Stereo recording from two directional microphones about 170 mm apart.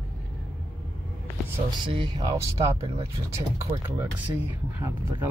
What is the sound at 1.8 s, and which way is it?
Speech, 30° right (ahead or behind).